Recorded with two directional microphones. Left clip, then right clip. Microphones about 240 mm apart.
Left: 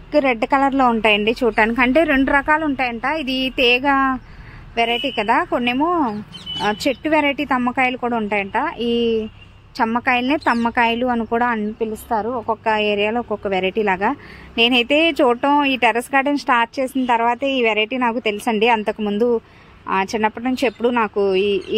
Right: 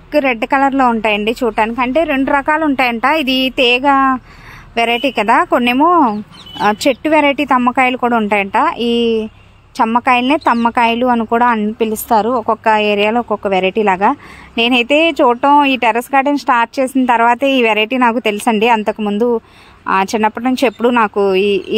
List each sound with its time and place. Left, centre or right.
0.1 s a woman's voice: centre
2.2 s a woman's voice: right
11.9 s a woman's voice: right
12.6 s a woman's voice: right